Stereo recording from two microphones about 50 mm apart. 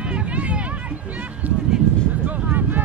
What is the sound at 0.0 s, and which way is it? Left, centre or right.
Run, right.